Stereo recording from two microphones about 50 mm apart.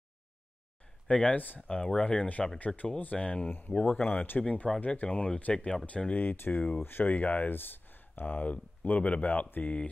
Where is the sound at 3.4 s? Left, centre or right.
Left.